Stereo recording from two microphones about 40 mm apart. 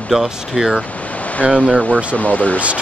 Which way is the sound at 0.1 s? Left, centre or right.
Centre.